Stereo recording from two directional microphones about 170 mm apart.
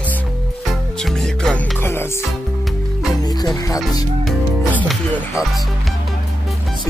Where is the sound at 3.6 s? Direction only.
20° left (ahead or behind).